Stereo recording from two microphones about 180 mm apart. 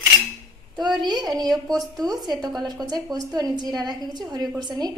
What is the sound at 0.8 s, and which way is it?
A woman's voice, 25° right (ahead or behind).